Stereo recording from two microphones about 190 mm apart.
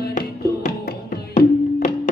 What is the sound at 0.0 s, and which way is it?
Music, 50° left (ahead or behind).